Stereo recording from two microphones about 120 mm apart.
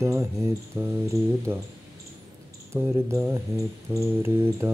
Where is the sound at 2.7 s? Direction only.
20° right (ahead or behind).